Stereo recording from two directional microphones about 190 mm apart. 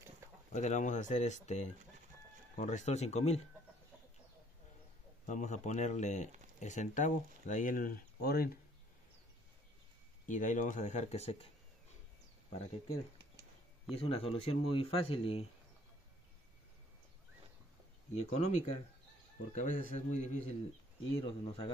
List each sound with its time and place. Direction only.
0.5 s speech: 40° left (ahead or behind)
5.2 s speech: 40° left (ahead or behind); by 8.5 s 55° left (ahead or behind)
10.2 s speech: 40° left (ahead or behind)
13.9 s speech: 30° left (ahead or behind)
18.1 s speech: 35° left (ahead or behind)
21.2 s speech: 30° left (ahead or behind)